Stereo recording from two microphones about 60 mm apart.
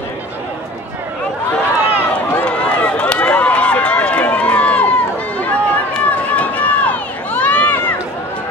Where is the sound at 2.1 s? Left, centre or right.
Left.